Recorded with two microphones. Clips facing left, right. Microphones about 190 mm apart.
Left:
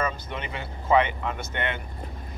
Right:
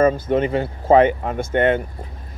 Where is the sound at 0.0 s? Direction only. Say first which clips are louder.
Right 14 dB; 50° right (ahead or behind).